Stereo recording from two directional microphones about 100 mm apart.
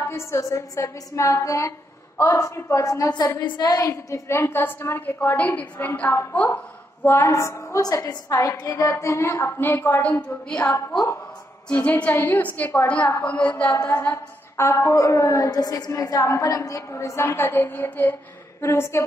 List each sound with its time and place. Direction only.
0.1 s a woman's voice: 30° left (ahead or behind); by 10.6 s 10° left (ahead or behind)
11.7 s a woman's voice: 15° left (ahead or behind)
13.8 s a woman's voice: 25° left (ahead or behind)